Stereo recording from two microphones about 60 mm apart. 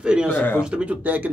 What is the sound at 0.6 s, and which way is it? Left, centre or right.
Speech, centre.